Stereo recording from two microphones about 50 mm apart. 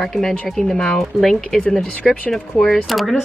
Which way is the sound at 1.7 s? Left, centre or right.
Centre.